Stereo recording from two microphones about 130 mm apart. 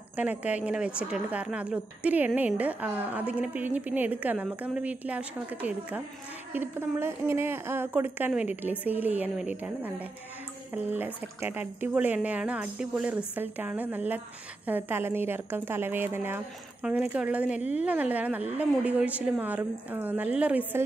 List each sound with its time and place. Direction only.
0.1 s a woman's voice: 10° right (ahead or behind)